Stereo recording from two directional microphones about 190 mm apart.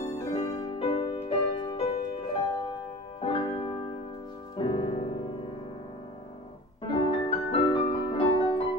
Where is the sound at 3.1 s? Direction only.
25° left (ahead or behind).